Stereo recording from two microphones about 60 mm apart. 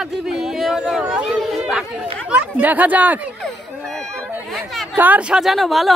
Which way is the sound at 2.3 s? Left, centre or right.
Right.